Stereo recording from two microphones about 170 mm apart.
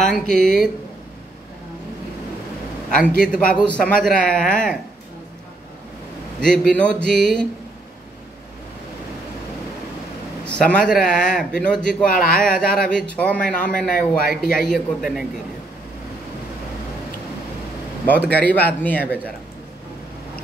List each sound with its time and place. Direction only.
0.0 s a man's voice: 5° left (ahead or behind)
3.1 s a man's voice: 5° left (ahead or behind)
6.4 s a man's voice: 5° left (ahead or behind)
10.4 s a man's voice: 5° left (ahead or behind)
12.2 s speech: 55° left (ahead or behind)
12.5 s speech: 5° left (ahead or behind)
13.9 s speech: 55° left (ahead or behind)
14.7 s a man's voice: centre (ahead or behind)
18.3 s speech: 10° left (ahead or behind)